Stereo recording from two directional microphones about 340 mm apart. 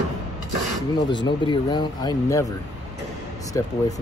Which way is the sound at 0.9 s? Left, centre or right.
Centre.